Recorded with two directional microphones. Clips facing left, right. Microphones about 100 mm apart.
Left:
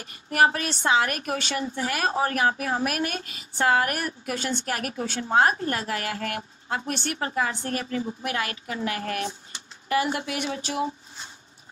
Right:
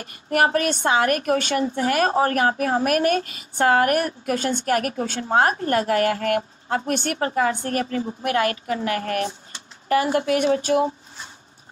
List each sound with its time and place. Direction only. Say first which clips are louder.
0.0 s a woman's voice: right 1 dB; 45° right (ahead or behind)